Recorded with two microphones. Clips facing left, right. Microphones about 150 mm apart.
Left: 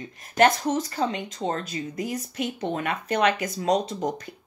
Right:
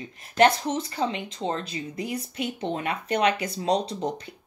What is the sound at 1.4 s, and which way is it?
Speech, centre (ahead or behind).